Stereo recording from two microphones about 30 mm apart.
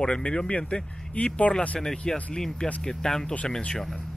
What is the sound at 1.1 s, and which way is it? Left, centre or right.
Speech, left.